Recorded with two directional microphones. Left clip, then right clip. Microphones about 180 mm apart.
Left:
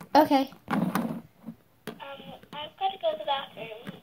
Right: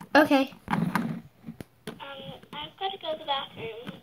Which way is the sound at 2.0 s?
55° left (ahead or behind).